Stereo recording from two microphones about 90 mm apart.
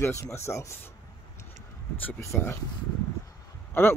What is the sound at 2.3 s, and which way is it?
Speech, 25° left (ahead or behind).